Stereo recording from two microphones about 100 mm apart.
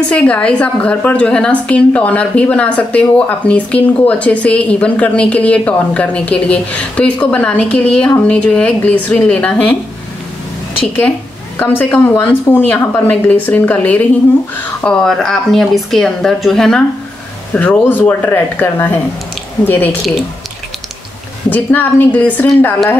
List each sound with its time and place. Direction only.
0.1 s a woman's voice: 10° left (ahead or behind)
11.5 s a woman's voice: 20° left (ahead or behind)
17.6 s speech: 15° left (ahead or behind)
21.5 s speech: 20° left (ahead or behind)